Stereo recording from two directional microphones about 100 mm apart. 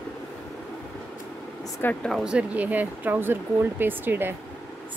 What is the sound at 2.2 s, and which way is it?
Speech, 15° right (ahead or behind).